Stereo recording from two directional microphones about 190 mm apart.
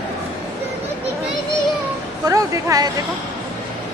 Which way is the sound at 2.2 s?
15° right (ahead or behind).